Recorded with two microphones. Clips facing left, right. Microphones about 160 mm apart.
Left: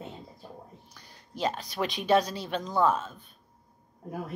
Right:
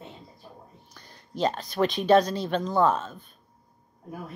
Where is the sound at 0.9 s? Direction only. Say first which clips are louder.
Right 6 dB; 10° left (ahead or behind).